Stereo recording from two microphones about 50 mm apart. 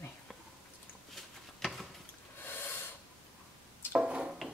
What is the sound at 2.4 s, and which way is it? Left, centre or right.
Snort, left.